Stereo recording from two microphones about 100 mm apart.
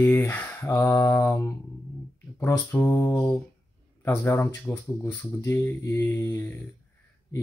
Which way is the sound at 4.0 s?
20° left (ahead or behind).